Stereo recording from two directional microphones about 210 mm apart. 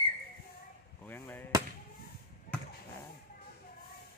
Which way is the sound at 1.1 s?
10° left (ahead or behind).